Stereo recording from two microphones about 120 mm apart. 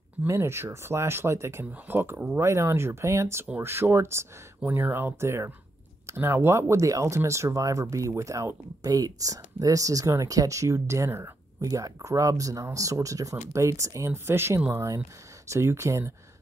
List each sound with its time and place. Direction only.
0.3 s speech: 20° right (ahead or behind)